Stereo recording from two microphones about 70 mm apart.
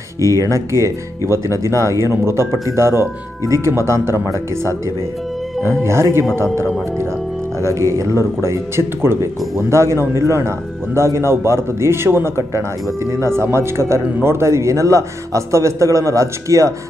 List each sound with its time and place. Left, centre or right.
0.5 s speech: right